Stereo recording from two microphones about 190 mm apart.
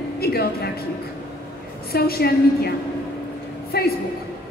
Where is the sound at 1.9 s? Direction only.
55° left (ahead or behind).